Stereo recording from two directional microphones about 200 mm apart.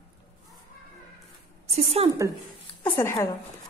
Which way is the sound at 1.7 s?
30° right (ahead or behind).